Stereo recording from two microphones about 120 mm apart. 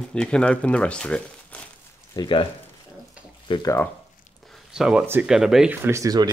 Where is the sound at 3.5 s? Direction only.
45° left (ahead or behind).